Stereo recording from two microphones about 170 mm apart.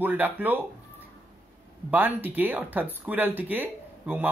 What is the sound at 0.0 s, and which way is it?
Speech, 10° right (ahead or behind).